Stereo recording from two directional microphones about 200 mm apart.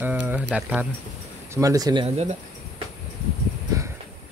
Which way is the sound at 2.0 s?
30° right (ahead or behind).